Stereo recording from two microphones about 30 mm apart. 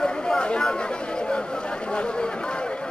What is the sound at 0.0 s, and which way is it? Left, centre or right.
Chatter, left.